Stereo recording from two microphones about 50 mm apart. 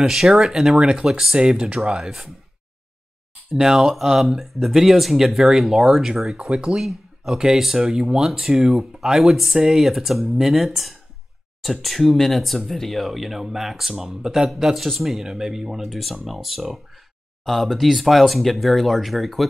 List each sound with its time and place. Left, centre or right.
0.0 s speech: centre
2.0 s speech: centre
3.7 s speech: centre
6.7 s speech: centre